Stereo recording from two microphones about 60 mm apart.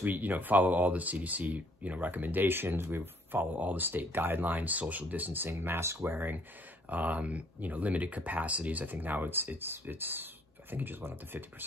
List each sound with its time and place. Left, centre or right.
0.0 s speech: right